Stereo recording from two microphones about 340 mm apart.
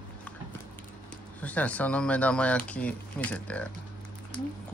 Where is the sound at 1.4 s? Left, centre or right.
Centre.